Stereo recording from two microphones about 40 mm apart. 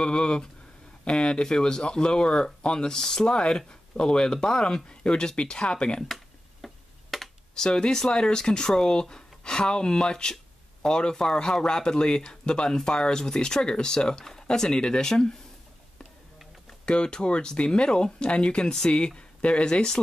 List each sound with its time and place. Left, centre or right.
0.0 s speech: left
6.0 s a sound: centre
7.5 s speech: centre
16.8 s speech: left